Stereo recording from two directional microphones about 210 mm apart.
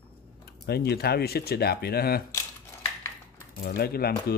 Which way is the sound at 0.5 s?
50° left (ahead or behind).